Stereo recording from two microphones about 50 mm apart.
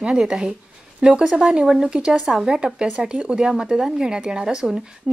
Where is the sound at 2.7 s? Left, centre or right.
Centre.